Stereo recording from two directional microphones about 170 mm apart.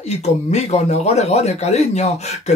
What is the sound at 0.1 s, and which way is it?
Speech, 40° left (ahead or behind).